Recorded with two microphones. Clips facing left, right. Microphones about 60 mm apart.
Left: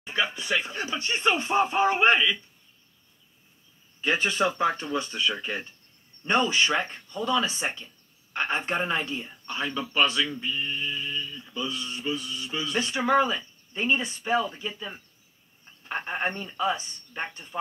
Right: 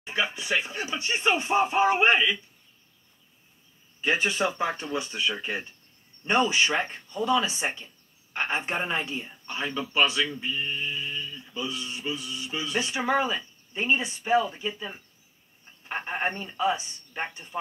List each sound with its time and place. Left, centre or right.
0.0 s speech: centre
4.0 s speech: centre